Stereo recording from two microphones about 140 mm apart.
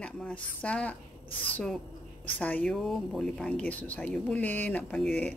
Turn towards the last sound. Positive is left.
turn(degrees=10)  # may be behind; listen again after turning